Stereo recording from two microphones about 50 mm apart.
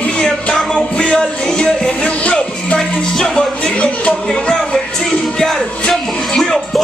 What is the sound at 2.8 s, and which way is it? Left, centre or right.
Music, centre.